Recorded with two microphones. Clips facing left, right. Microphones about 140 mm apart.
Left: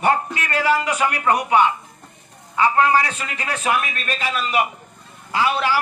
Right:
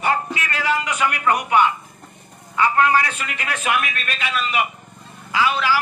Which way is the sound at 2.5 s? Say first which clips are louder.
Left 1 dB; 25° left (ahead or behind).